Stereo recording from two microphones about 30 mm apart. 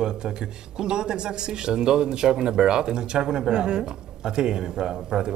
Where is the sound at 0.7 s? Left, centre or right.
Right.